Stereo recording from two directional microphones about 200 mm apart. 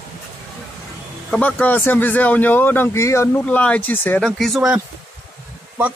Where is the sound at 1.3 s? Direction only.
5° left (ahead or behind).